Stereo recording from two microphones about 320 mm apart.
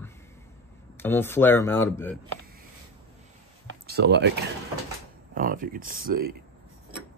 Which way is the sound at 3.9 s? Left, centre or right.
Right.